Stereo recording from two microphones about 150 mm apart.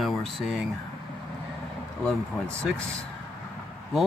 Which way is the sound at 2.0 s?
5° left (ahead or behind).